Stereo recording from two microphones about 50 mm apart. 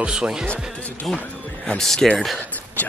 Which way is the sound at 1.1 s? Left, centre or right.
Centre.